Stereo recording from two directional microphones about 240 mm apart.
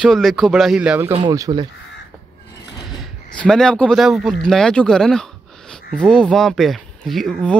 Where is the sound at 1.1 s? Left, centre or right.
Centre.